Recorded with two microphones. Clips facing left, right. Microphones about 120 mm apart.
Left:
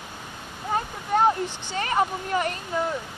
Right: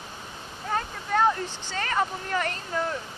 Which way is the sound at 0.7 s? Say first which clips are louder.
Left 2 dB; 20° left (ahead or behind).